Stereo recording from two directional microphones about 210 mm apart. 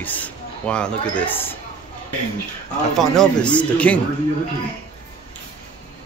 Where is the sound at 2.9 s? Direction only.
5° left (ahead or behind).